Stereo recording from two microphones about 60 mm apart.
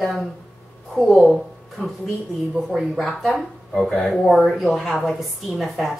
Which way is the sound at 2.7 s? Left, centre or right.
Centre.